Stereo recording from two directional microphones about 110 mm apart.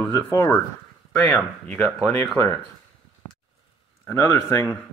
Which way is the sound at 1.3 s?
15° left (ahead or behind).